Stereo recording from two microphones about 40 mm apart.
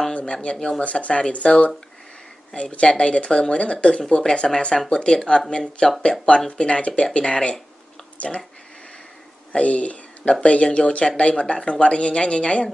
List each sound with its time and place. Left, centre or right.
0.1 s speech: left
9.5 s speech: left